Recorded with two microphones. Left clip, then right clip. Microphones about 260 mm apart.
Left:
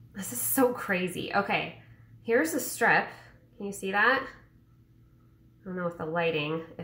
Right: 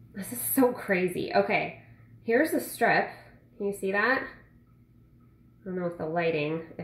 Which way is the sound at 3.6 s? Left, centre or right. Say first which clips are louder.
Left 1 dB; left.